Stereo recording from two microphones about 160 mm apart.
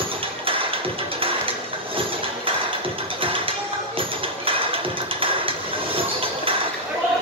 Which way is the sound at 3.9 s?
35° right (ahead or behind).